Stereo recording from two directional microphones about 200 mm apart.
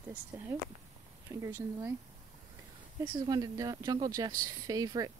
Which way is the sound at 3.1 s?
20° right (ahead or behind).